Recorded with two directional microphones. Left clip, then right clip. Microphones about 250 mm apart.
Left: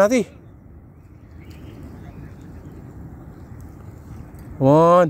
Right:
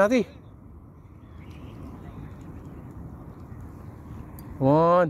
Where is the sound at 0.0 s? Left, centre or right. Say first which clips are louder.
Left 5 dB; centre.